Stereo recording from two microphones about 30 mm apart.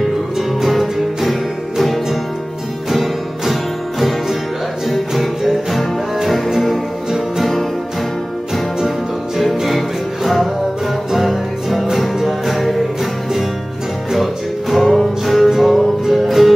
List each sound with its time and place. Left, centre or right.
0.7 s music: centre
2.9 s music: centre
4.8 s music: centre
9.7 s music: centre
14.1 s music: centre
14.8 s music: centre